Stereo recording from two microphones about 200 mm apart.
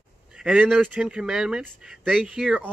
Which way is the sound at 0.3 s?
5° right (ahead or behind).